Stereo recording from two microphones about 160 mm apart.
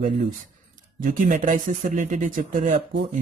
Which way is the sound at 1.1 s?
55° right (ahead or behind).